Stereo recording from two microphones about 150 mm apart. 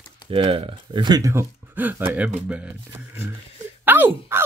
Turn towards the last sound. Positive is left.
turn(degrees=-15)  # may be behind; listen again after turning